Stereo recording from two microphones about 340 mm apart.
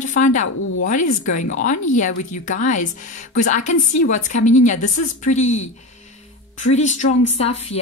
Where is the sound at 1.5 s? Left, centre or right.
Left.